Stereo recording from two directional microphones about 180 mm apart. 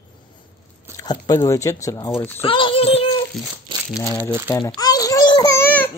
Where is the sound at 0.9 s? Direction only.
20° left (ahead or behind).